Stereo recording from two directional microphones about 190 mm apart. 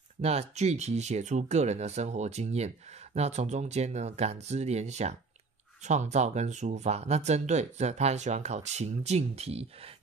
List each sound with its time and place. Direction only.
0.2 s speech: 35° right (ahead or behind)